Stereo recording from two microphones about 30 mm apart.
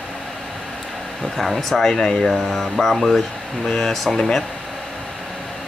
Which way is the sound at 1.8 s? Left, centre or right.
Centre.